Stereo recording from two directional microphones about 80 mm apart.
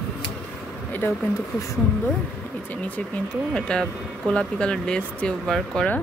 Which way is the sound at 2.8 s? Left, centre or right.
Centre.